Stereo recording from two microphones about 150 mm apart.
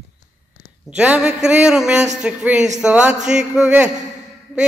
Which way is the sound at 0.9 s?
5° right (ahead or behind).